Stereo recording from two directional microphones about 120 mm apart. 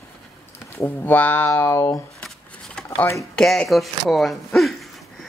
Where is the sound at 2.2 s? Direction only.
5° left (ahead or behind).